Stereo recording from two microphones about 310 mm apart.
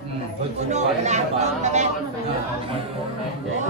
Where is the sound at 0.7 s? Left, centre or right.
Right.